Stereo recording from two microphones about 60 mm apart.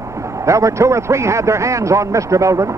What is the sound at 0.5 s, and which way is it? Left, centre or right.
A man's voice, right.